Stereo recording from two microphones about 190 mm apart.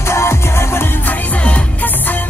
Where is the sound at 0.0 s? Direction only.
15° left (ahead or behind).